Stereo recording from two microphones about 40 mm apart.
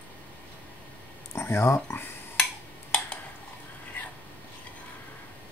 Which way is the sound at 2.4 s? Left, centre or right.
Centre.